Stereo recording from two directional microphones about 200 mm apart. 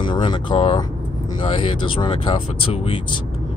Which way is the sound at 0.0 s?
25° left (ahead or behind).